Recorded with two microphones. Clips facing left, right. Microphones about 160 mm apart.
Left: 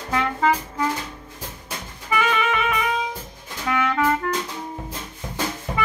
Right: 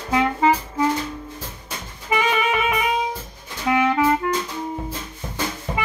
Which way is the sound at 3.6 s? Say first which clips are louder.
Right 3 dB; 20° right (ahead or behind).